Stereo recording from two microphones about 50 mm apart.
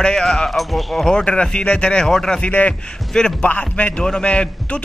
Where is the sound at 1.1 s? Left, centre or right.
Centre.